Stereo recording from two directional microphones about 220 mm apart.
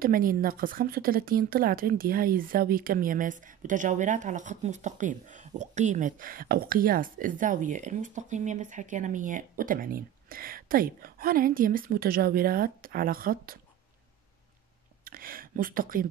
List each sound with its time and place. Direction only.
0.0 s speech: 40° right (ahead or behind)
15.0 s speech: 40° right (ahead or behind)